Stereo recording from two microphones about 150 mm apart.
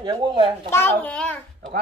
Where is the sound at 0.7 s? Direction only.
15° left (ahead or behind).